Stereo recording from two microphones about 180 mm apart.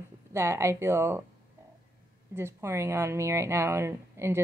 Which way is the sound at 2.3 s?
15° right (ahead or behind).